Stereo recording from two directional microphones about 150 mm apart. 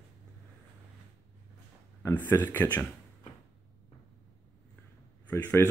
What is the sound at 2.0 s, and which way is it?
Speech, 15° left (ahead or behind).